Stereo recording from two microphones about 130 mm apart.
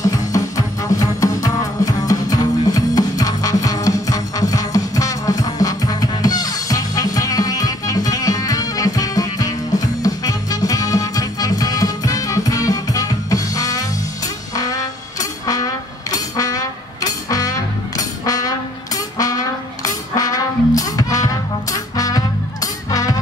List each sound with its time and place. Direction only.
0.0 s music: 25° left (ahead or behind)